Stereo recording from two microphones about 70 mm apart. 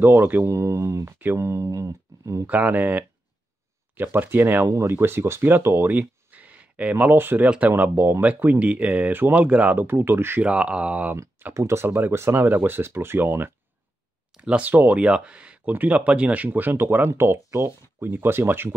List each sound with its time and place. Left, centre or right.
0.0 s speech: right
0.5 s speech: right
2.4 s speech: right
7.4 s speech: centre
7.7 s speech: right
9.8 s speech: right
10.4 s speech: centre
11.5 s speech: right
14.3 s a sound: centre
14.6 s speech: right
17.1 s speech: right